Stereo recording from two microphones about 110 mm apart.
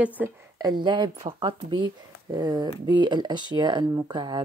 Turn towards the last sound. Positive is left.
turn(degrees=-40)  # may be behind; listen again after turning